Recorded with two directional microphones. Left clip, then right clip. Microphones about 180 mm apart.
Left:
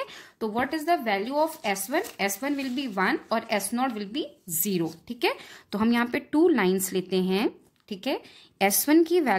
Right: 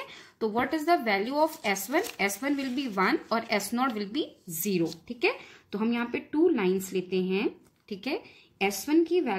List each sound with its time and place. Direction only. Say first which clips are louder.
0.0 s a sound: even; 30° left (ahead or behind)
0.6 s speech: left 1 dB; 15° left (ahead or behind)
4.6 s speech: even; 35° left (ahead or behind)
8.6 s speech: left 4 dB; 50° left (ahead or behind)